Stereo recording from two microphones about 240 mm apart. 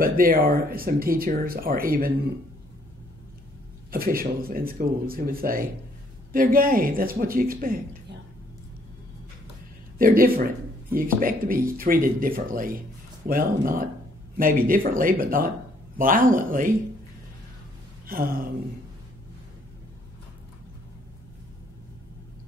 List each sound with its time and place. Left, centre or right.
0.0 s speech: right
3.9 s speech: right
9.9 s speech: right
18.0 s a sound: right